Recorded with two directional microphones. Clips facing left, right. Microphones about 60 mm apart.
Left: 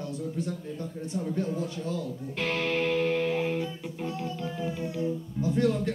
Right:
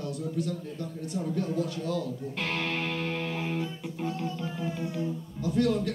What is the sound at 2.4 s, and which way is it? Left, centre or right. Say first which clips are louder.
Music: left 4 dB; centre.